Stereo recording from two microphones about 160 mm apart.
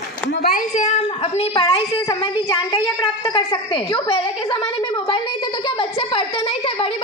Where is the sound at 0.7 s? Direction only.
45° left (ahead or behind).